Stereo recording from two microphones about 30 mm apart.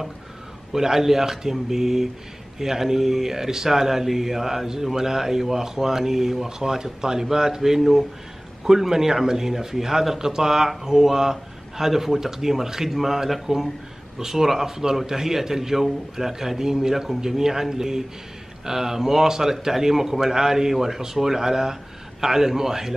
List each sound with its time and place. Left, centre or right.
0.7 s speech: centre